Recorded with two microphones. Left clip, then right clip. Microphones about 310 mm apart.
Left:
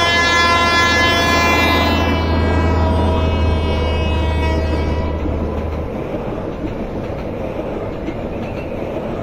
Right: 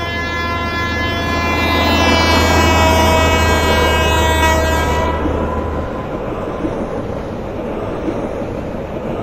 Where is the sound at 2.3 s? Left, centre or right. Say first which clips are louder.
Right 7 dB; right.